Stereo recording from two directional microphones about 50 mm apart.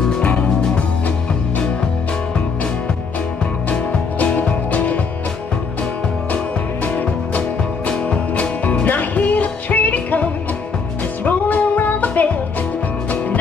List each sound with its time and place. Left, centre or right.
0.2 s music: left
4.2 s music: left
6.3 s music: left
11.2 s music: left